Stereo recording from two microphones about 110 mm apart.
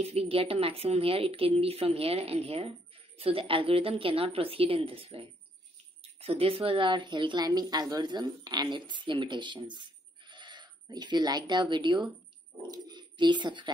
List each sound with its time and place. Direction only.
0.0 s speech: 65° right (ahead or behind)
6.2 s speech: 60° right (ahead or behind)